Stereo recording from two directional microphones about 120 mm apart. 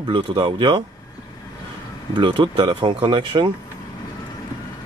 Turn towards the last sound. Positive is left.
turn(degrees=-40)  # may be behind; listen again after turning